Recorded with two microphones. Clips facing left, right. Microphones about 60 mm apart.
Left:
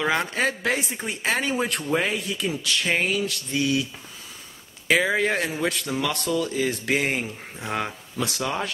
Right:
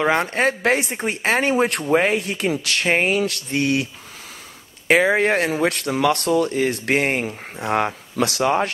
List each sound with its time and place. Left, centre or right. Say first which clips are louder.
0.0 s a woman's voice: right 5 dB; right
0.3 s a woman's voice: right 5 dB; right
1.8 s speech: right 6 dB; right
2.9 s speech: right 6 dB; right
4.8 s speech: right 5 dB; right
5.7 s speech: right 7 dB; right
8.2 s speech: right 7 dB; right
8.5 s speech: right 10 dB; right